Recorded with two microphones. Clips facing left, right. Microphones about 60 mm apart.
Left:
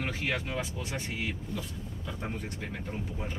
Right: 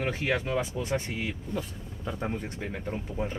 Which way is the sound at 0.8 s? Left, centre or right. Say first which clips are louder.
Right 7 dB; right.